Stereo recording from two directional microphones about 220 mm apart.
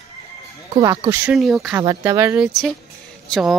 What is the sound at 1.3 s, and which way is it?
Speech, centre (ahead or behind).